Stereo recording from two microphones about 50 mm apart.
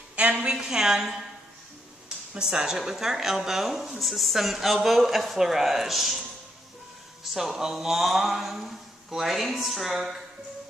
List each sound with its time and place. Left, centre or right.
0.1 s a sound: right
0.5 s a woman's voice: centre
2.3 s a woman's voice: centre
7.3 s a woman's voice: centre